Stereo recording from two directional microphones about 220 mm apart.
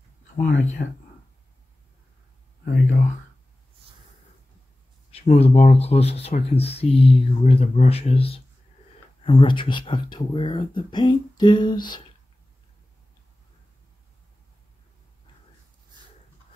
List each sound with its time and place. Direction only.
2.6 s speech: 35° left (ahead or behind)
5.1 s speech: 30° left (ahead or behind)